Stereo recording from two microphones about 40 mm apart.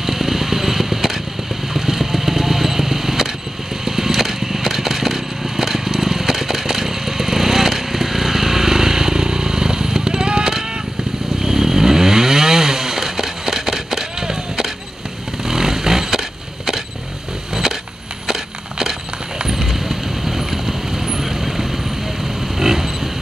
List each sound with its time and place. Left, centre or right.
0.0 s vehicle: centre
11.4 s chainsaw: centre
15.4 s vehicle: centre
18.2 s a sound: centre
19.4 s vehicle: centre
22.6 s a sound: centre